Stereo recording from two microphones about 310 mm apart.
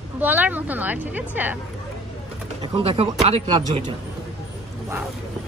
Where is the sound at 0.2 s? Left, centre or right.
Centre.